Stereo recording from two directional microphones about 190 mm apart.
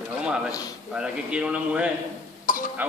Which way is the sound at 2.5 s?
45° left (ahead or behind).